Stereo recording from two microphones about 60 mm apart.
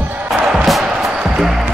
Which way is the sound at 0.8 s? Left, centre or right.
Centre.